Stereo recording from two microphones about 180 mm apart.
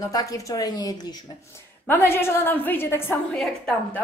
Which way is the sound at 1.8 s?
10° left (ahead or behind).